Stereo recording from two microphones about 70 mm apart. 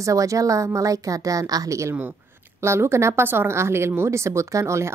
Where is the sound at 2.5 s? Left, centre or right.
Right.